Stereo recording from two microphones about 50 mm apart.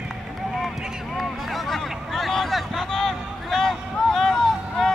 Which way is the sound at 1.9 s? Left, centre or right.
Centre.